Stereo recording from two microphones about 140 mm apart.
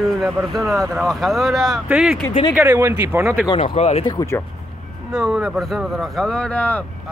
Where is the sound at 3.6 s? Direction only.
55° left (ahead or behind).